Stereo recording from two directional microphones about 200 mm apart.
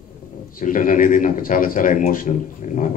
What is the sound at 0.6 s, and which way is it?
A man's voice, 45° left (ahead or behind).